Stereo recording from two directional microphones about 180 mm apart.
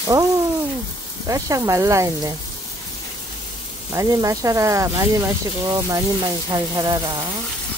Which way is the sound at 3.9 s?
20° right (ahead or behind).